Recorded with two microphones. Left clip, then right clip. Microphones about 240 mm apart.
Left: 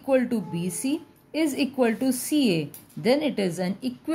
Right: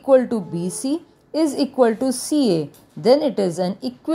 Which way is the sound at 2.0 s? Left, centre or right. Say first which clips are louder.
Right 4 dB; centre.